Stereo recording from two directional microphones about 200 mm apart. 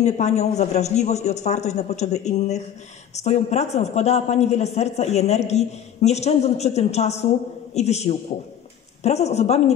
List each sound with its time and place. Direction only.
0.0 s a woman's voice: 35° left (ahead or behind)